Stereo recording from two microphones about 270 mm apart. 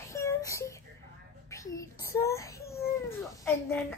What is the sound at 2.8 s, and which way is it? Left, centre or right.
Dog, centre.